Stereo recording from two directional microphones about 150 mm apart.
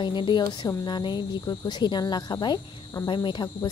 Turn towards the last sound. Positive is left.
turn(degrees=30)  # may be behind; listen again after turning